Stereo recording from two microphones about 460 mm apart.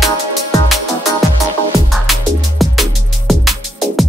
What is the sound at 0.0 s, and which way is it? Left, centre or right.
Music, centre.